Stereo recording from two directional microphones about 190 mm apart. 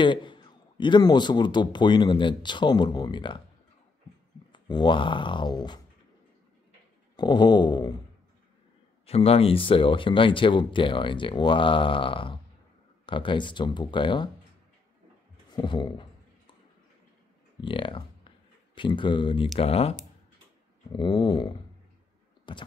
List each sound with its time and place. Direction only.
0.0 s a man's voice: 25° left (ahead or behind)
4.5 s a man's voice: 25° left (ahead or behind)
7.2 s a man's voice: 20° left (ahead or behind)
9.0 s a man's voice: 30° left (ahead or behind)
15.5 s speech: 25° left (ahead or behind)
17.6 s a man's voice: 25° left (ahead or behind)